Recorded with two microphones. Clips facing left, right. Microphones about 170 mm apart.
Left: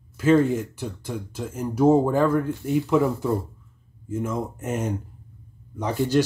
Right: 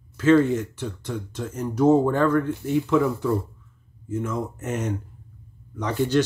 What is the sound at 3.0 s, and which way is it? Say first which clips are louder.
Speech: even; 20° left (ahead or behind).